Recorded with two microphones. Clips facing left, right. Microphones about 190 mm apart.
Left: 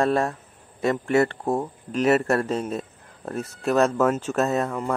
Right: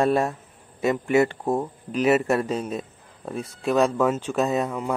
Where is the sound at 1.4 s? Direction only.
Centre (ahead or behind).